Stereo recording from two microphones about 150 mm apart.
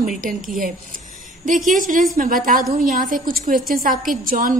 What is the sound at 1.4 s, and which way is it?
A woman's voice, 60° right (ahead or behind).